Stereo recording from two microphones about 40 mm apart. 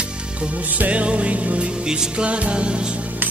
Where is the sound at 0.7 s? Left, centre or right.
Right.